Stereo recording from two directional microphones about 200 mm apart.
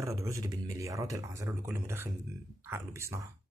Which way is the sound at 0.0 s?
15° right (ahead or behind).